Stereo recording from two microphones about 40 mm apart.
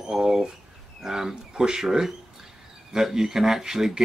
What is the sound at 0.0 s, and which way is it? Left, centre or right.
Bird, centre.